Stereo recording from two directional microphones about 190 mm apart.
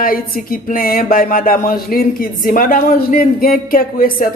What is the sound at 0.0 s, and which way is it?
A man's voice, 50° left (ahead or behind).